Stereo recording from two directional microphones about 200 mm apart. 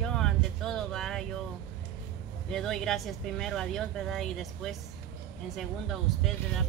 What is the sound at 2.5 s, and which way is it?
Speech, centre (ahead or behind).